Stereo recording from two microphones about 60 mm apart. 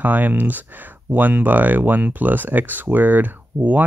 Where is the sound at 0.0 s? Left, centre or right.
Right.